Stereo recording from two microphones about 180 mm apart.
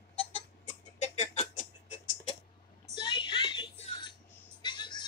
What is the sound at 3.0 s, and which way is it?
Music, 25° left (ahead or behind).